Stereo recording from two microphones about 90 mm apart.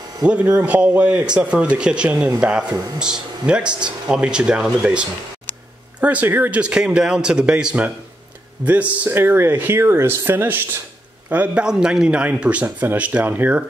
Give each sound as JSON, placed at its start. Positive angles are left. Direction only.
{"t": 0.2, "sound": "speech", "side_deg": -15}
{"t": 11.6, "sound": "speech", "side_deg": -10}